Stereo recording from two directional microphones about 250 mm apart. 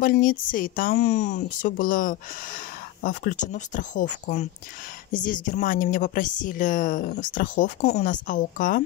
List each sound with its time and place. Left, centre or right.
0.0 s a woman's voice: left